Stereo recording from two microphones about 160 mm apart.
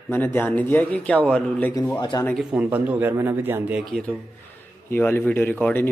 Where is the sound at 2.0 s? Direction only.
25° left (ahead or behind).